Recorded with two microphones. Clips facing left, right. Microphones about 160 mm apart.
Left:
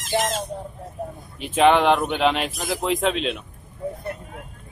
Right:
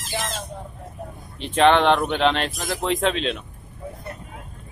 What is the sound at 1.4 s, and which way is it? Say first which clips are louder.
Speech: even; 5° left (ahead or behind).